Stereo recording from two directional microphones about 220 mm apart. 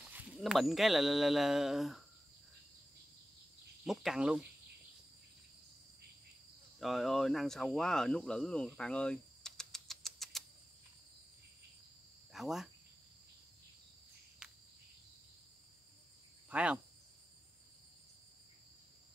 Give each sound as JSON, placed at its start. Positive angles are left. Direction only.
{"t": 0.1, "sound": "speech", "side_deg": -5}
{"t": 3.8, "sound": "speech", "side_deg": 0}
{"t": 6.8, "sound": "speech", "side_deg": 0}
{"t": 12.3, "sound": "cricket", "side_deg": 0}
{"t": 14.4, "sound": "cricket", "side_deg": -5}
{"t": 16.4, "sound": "cricket", "side_deg": -5}